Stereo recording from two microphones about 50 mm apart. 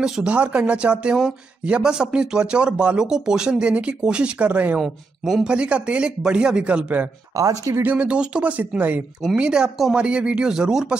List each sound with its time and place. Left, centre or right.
0.0 s speech: centre
0.3 s speech: right
4.7 s speech: centre; by 7.1 s right
7.3 s speech: right
7.8 s speech: right
9.2 s speech: centre